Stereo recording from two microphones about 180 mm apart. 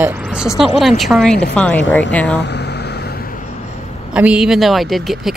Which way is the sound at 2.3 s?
70° left (ahead or behind).